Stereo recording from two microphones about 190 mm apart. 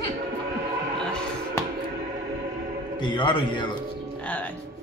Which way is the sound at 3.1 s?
25° left (ahead or behind).